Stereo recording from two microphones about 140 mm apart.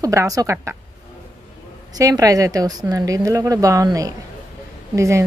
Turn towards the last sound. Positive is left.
turn(degrees=-20)  # may be behind; listen again after turning